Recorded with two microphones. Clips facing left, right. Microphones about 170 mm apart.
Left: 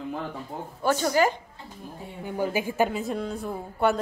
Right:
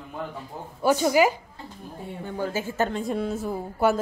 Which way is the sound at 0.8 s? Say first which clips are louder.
Right 3 dB; 10° right (ahead or behind).